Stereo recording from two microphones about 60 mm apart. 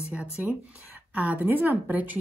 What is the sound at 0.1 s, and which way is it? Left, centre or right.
A woman's voice, right.